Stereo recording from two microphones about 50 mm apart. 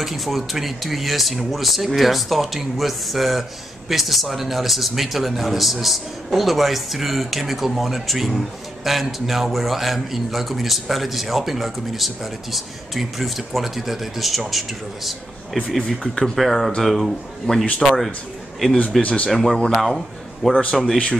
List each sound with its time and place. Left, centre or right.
0.0 s a man's voice: centre
15.5 s a man's voice: centre
18.9 s speech: left
19.3 s a man's voice: centre